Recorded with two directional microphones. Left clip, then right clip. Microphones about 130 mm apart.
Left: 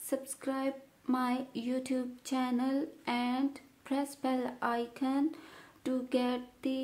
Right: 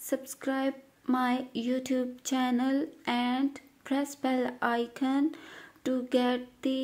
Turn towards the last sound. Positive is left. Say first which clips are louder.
# right 4 dB
turn(degrees=-15)  # may be behind; listen again after turning